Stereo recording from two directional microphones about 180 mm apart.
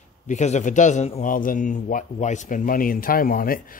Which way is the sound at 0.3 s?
40° left (ahead or behind).